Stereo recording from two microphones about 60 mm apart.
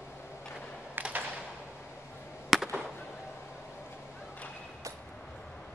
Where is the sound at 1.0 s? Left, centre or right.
Right.